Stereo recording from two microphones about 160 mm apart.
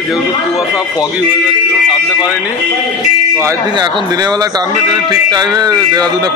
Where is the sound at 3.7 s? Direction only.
30° right (ahead or behind).